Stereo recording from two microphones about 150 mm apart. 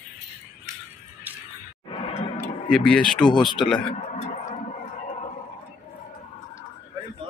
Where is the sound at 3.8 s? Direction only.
45° left (ahead or behind).